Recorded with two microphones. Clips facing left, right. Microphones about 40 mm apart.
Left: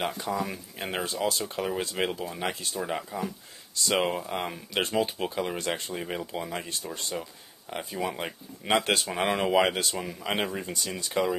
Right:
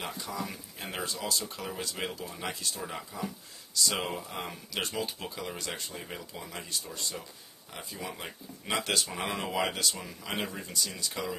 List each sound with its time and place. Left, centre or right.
0.3 s speech: left
1.0 s speech: left